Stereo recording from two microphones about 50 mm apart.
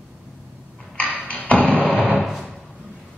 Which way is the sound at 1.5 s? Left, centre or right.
Left.